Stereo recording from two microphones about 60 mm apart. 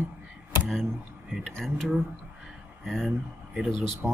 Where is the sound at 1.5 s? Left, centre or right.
Centre.